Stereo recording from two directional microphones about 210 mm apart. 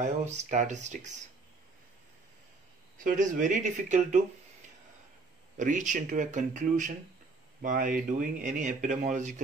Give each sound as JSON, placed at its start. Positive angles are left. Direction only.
{"t": 0.0, "sound": "a man's voice", "side_deg": -35}
{"t": 3.0, "sound": "a man's voice", "side_deg": -40}
{"t": 5.6, "sound": "a man's voice", "side_deg": -40}